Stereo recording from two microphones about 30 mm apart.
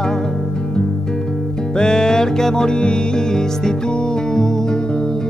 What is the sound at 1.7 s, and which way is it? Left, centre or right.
Music, left.